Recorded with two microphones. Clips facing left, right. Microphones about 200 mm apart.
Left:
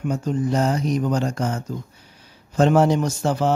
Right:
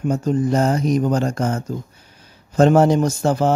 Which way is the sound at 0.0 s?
45° right (ahead or behind).